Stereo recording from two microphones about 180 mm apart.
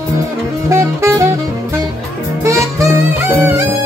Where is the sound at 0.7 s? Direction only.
15° right (ahead or behind).